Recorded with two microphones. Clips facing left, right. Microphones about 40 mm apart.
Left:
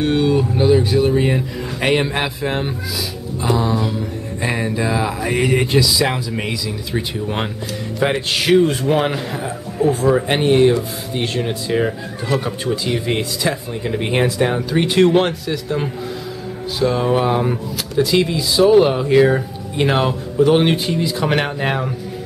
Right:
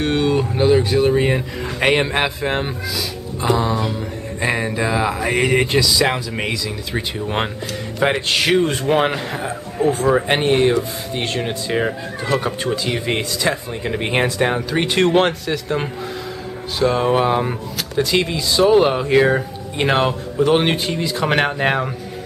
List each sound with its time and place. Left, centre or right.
0.0 s speech: right
8.0 s speech: centre
16.8 s speech: centre